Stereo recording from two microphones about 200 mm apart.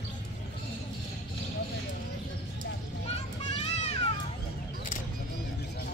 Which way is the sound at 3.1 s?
35° left (ahead or behind).